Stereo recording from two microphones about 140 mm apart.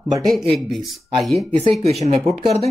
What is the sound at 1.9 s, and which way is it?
Speech, 50° right (ahead or behind).